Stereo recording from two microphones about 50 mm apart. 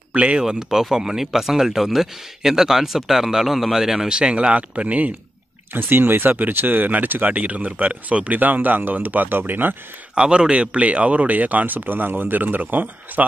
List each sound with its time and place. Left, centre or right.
0.1 s speech: right
0.4 s speech: centre; by 5.1 s right
5.7 s speech: right
10.1 s speech: centre; by 13.2 s right